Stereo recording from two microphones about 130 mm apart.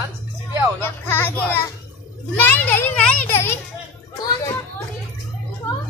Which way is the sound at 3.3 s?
20° left (ahead or behind).